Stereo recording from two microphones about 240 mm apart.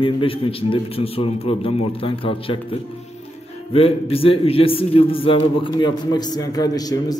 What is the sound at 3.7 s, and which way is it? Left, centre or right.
A man's voice, left.